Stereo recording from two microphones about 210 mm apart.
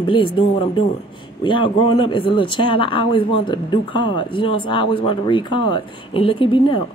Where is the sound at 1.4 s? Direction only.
20° left (ahead or behind).